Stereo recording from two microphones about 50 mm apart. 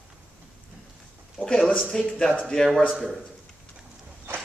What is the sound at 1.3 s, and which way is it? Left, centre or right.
Speech, left.